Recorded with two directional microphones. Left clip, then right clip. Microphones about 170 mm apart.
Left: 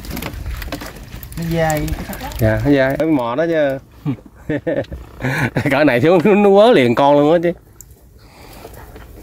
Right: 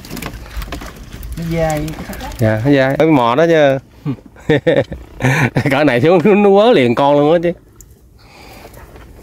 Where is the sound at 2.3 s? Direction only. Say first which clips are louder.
Right 2 dB; 15° right (ahead or behind).